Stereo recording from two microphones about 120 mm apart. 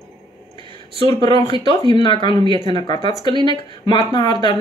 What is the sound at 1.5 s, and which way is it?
Speech, 35° left (ahead or behind).